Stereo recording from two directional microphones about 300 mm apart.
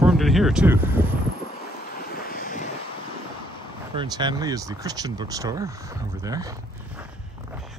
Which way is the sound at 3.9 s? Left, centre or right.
Centre.